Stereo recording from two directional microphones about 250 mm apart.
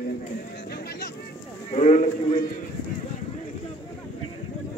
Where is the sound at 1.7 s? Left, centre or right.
Left.